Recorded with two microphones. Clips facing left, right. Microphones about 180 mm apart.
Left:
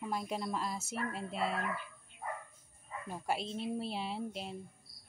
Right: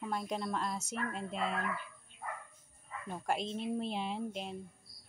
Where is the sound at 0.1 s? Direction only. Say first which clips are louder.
Right 1 dB; 5° left (ahead or behind).